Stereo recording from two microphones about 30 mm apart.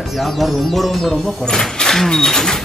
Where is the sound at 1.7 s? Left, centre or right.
Centre.